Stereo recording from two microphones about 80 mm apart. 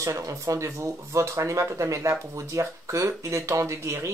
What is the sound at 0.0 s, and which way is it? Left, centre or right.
Speech, right.